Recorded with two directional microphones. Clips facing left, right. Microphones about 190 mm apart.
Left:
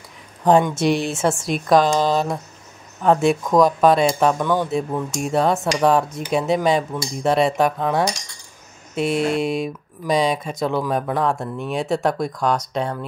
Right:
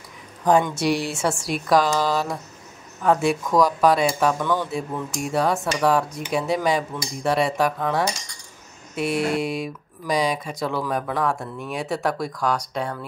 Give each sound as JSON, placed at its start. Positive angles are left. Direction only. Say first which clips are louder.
{"t": 0.7, "sound": "speech", "louder": "left 3 dB", "side_deg": 20}